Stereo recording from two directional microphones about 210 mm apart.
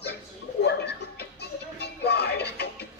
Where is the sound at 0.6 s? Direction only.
50° left (ahead or behind).